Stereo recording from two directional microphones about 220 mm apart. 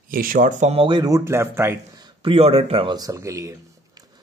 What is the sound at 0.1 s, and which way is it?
Speech, 40° right (ahead or behind).